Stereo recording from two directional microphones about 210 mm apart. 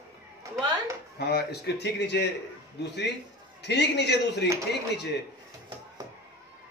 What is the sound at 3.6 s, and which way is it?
Speech, 55° left (ahead or behind).